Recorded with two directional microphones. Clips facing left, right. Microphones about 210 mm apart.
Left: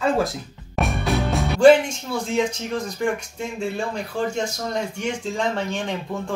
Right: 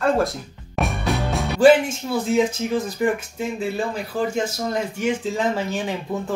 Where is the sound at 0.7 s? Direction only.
Centre (ahead or behind).